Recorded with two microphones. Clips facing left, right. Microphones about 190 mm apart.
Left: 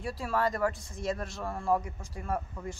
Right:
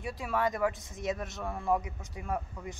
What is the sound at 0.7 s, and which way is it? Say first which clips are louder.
Speech: even; 20° right (ahead or behind).